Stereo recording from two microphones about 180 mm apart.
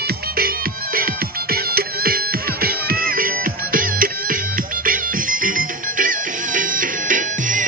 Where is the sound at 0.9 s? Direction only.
55° right (ahead or behind).